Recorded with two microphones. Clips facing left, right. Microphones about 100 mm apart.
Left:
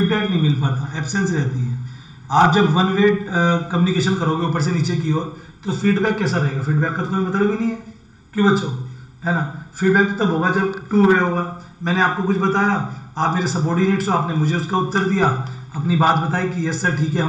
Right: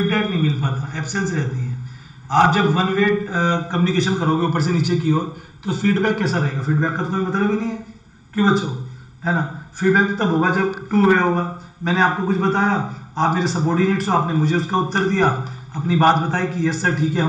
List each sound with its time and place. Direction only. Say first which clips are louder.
0.1 s a man's voice: left 1 dB; 15° left (ahead or behind)